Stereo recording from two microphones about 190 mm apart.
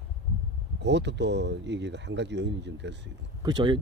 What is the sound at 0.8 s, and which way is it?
Speech, 65° right (ahead or behind).